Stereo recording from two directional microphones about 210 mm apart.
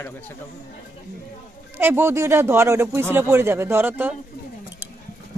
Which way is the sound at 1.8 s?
10° right (ahead or behind).